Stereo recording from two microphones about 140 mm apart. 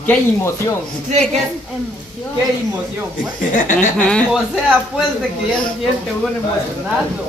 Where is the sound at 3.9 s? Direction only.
10° left (ahead or behind).